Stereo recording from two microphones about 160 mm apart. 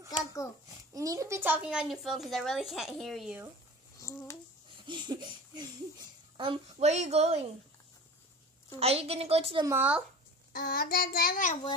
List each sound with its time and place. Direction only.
0.1 s a sound: 20° left (ahead or behind)
0.9 s speech: 20° right (ahead or behind); by 3.3 s centre (ahead or behind)
4.0 s a sound: 20° left (ahead or behind)
4.8 s laughter: 30° right (ahead or behind)
6.3 s a woman's voice: 35° right (ahead or behind)
8.7 s a woman's voice: 40° right (ahead or behind)
9.7 s speech: 10° right (ahead or behind)
10.5 s child singing: 70° left (ahead or behind)